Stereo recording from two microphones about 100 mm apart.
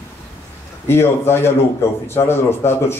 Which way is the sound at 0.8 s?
25° left (ahead or behind).